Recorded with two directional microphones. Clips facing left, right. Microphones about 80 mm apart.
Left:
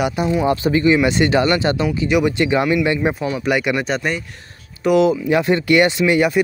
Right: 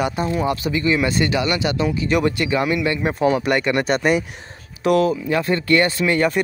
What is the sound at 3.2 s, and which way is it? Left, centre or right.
Speech, right.